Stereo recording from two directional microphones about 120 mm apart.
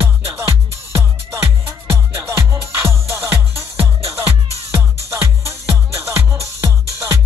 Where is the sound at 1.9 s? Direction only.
20° right (ahead or behind).